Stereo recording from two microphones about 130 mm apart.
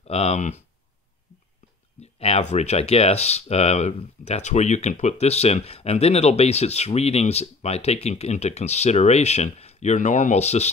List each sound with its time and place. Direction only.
0.0 s speech: 50° left (ahead or behind)
2.0 s speech: 55° left (ahead or behind)